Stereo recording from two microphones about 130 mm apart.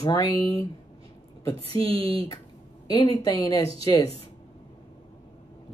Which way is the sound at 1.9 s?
45° right (ahead or behind).